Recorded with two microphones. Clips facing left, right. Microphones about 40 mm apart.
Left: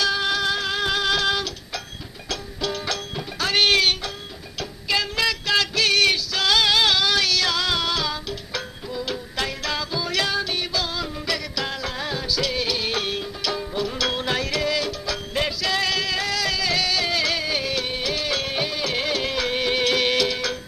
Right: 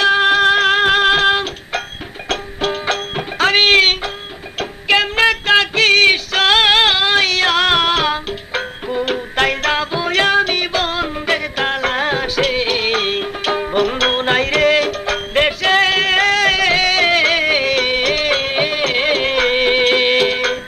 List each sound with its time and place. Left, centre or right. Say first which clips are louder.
0.0 s music: right 10 dB; right